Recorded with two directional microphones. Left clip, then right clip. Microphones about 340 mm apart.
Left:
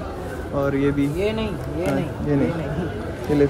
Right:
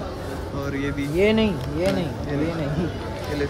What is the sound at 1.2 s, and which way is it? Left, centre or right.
Speech, right.